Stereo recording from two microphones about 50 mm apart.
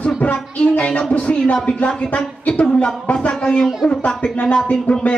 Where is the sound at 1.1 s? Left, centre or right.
Left.